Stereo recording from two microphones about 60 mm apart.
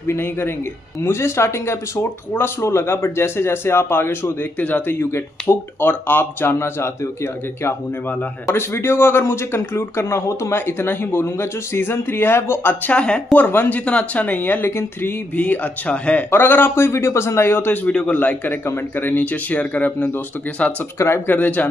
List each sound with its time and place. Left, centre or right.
0.0 s speech: left
4.9 s speech: left
8.5 s speech: left
10.5 s speech: left
12.9 s speech: centre
13.5 s speech: left
13.7 s speech: left
15.3 s speech: left
16.3 s speech: left
17.8 s speech: centre
18.1 s speech: left
21.3 s speech: left